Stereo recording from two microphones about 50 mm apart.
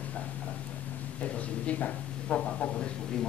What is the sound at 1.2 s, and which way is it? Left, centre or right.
Speech, left.